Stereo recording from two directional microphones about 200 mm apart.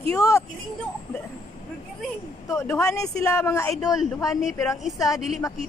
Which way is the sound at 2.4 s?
15° left (ahead or behind).